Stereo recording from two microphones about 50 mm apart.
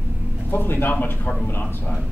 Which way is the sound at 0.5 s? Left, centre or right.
Left.